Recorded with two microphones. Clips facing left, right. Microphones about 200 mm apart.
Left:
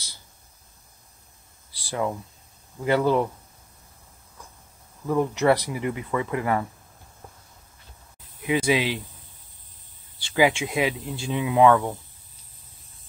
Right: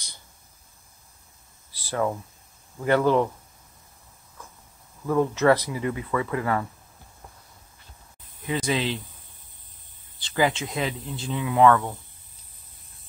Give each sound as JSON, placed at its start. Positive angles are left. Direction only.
{"t": 1.8, "sound": "a sound", "side_deg": 15}
{"t": 2.8, "sound": "speech", "side_deg": 15}
{"t": 5.0, "sound": "speech", "side_deg": 15}
{"t": 8.4, "sound": "speech", "side_deg": 10}
{"t": 10.1, "sound": "speech", "side_deg": 10}